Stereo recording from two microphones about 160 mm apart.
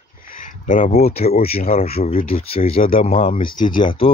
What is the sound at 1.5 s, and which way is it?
Speech, 65° left (ahead or behind).